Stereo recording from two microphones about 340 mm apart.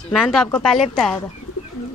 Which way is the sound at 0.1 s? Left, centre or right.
Centre.